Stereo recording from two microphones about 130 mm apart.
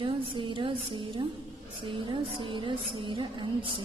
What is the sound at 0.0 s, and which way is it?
A woman's voice, 40° right (ahead or behind).